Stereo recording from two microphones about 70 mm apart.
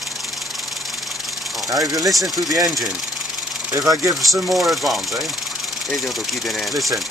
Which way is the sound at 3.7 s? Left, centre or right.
Right.